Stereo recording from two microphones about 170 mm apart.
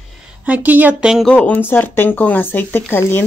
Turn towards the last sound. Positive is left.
turn(degrees=15)  # may be behind; listen again after turning